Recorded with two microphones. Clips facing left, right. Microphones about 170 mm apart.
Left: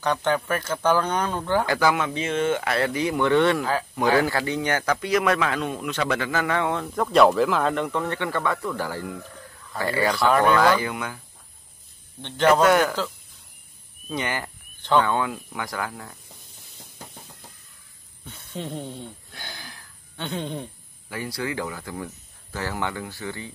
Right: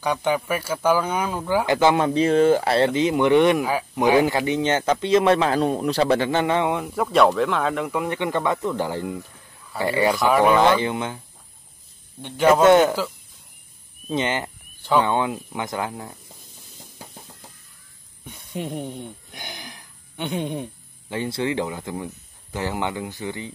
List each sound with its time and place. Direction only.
0.0 s speech: 10° right (ahead or behind)
1.7 s speech: 25° right (ahead or behind)
2.0 s speech: 35° right (ahead or behind); by 10.6 s 10° right (ahead or behind)
10.6 s speech: 25° right (ahead or behind)
12.2 s speech: 10° right (ahead or behind)
12.6 s speech: 25° right (ahead or behind)
14.1 s speech: 20° right (ahead or behind)
14.8 s a sound: 10° right (ahead or behind)
15.0 s speech: 20° right (ahead or behind)
18.2 s a sound: 15° right (ahead or behind)
21.1 s speech: 25° right (ahead or behind)